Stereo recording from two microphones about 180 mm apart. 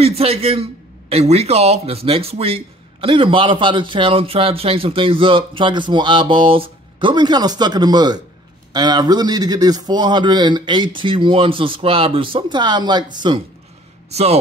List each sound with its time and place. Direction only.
0.0 s a man's voice: 35° right (ahead or behind)
14.1 s speech: 35° right (ahead or behind)